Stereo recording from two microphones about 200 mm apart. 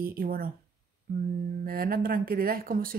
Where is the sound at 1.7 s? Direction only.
50° right (ahead or behind).